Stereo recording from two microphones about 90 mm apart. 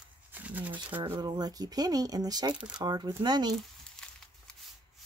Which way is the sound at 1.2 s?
50° right (ahead or behind).